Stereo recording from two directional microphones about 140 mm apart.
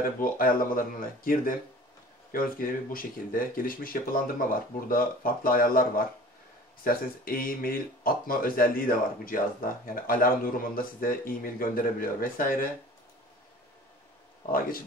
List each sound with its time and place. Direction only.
0.0 s speech: 90° left